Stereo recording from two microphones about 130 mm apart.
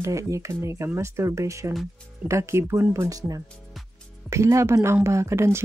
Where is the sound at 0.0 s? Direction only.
25° right (ahead or behind).